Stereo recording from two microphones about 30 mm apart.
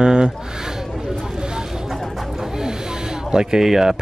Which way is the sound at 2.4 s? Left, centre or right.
Centre.